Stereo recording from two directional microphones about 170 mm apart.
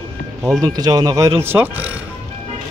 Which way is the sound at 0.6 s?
20° right (ahead or behind).